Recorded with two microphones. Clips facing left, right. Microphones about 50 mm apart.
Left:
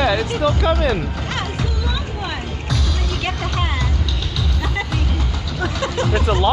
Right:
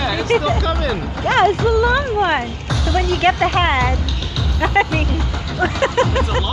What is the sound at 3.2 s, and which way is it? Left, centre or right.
Speech, right.